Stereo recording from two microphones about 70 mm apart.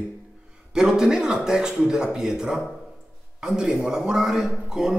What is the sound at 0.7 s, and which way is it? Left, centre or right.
A man's voice, centre.